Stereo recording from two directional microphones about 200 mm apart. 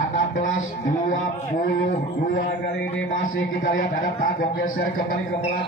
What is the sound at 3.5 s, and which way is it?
A man's voice, 45° left (ahead or behind).